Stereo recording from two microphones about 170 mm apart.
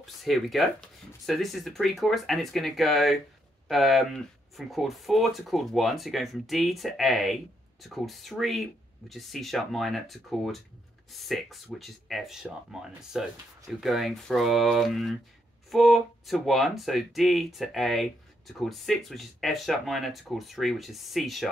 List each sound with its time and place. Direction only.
0.0 s speech: centre (ahead or behind)